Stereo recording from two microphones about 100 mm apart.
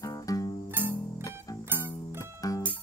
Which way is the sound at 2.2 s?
35° left (ahead or behind).